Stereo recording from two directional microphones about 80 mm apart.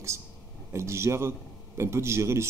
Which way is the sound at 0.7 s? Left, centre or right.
Right.